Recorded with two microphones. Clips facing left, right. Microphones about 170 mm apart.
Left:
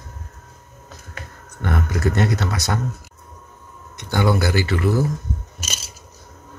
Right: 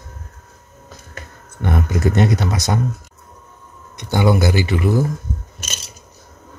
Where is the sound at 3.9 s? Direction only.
20° right (ahead or behind).